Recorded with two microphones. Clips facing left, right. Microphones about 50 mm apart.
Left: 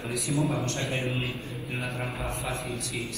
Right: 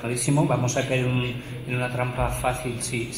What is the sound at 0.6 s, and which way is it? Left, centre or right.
Speech, right.